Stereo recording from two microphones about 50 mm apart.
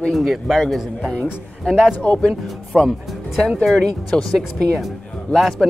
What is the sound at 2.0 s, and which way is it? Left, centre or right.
Speech, left.